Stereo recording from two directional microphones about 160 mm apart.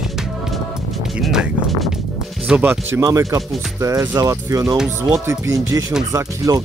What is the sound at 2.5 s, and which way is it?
Speech, 10° right (ahead or behind).